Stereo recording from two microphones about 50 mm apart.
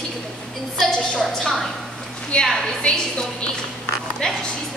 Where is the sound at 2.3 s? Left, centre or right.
Left.